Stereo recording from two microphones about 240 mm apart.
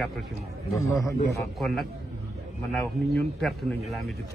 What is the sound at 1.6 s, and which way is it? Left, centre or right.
Speech, centre.